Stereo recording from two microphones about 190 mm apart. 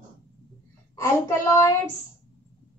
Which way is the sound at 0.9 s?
15° left (ahead or behind).